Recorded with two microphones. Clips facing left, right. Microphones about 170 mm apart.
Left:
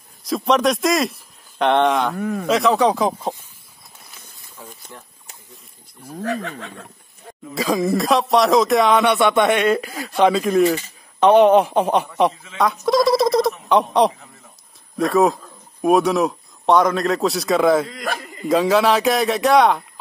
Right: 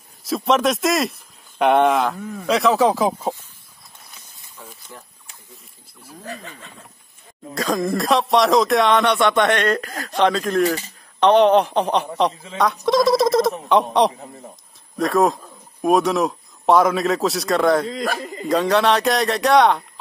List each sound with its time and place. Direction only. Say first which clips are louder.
0.2 s speech: left 1 dB; centre (ahead or behind)
2.1 s a man's voice: left 7 dB; 70° left (ahead or behind)
2.4 s speech: even; centre (ahead or behind)
6.2 s speech: left 10 dB; 70° left (ahead or behind)
7.5 s a man's voice: left 2 dB; centre (ahead or behind)
14.1 s a sound: right 9 dB; 35° right (ahead or behind)
15.0 s speech: left 1 dB; centre (ahead or behind)
18.2 s a sound: right 1 dB; 25° right (ahead or behind)
18.5 s speech: left 1 dB; centre (ahead or behind)